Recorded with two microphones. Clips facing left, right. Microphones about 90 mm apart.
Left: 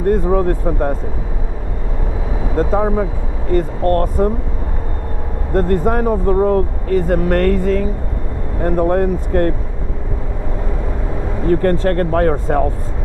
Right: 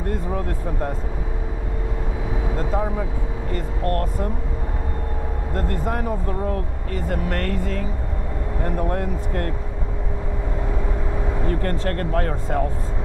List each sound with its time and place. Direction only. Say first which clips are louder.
0.1 s speech: left 13 dB; 45° left (ahead or behind)
2.7 s speech: left 7 dB; 45° left (ahead or behind)
5.5 s speech: left 11 dB; 45° left (ahead or behind)
11.6 s speech: left 9 dB; 45° left (ahead or behind)